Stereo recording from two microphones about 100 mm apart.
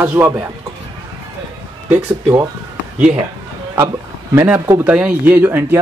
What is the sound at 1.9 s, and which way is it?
Speech, 20° right (ahead or behind).